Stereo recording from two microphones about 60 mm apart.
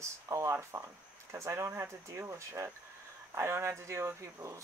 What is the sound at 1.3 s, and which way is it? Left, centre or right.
Speech, right.